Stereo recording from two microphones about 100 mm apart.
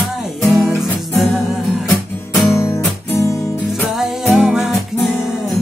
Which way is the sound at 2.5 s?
30° left (ahead or behind).